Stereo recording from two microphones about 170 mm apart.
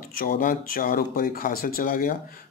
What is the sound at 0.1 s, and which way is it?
Speech, 60° left (ahead or behind).